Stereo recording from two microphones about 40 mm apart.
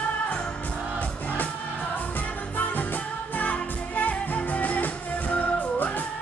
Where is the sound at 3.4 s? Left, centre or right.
Left.